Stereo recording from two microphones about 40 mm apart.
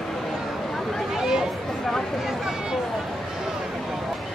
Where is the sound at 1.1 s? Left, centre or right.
Centre.